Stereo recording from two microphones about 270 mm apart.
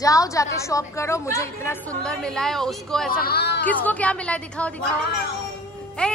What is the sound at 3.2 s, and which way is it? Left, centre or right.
Speech, left.